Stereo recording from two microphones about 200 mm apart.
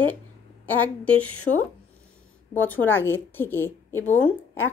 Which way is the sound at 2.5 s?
10° left (ahead or behind).